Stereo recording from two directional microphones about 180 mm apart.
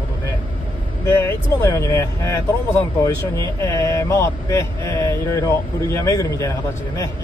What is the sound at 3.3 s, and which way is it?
Speech, 15° left (ahead or behind).